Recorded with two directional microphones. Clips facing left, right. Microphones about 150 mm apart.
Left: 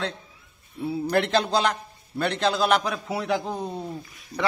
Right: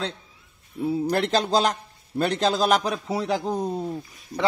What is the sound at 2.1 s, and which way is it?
Speech, 40° right (ahead or behind).